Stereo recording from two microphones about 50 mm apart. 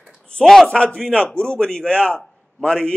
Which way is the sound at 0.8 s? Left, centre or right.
Centre.